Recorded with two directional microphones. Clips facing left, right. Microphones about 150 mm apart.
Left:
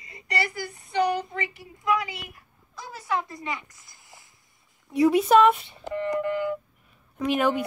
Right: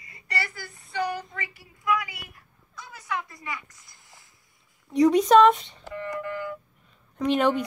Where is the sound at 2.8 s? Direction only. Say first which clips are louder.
Left 4 dB; 30° left (ahead or behind).